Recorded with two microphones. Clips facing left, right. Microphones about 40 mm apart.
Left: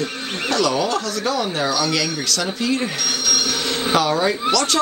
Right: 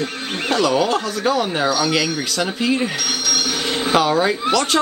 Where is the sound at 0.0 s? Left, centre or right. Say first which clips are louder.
Right 1 dB; right.